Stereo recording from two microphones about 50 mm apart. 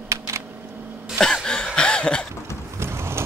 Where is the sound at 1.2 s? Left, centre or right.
Centre.